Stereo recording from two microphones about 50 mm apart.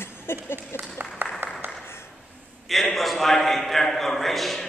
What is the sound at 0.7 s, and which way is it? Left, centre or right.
Applause, left.